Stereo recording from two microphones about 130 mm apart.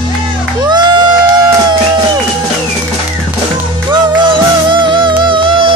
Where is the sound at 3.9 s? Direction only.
35° right (ahead or behind).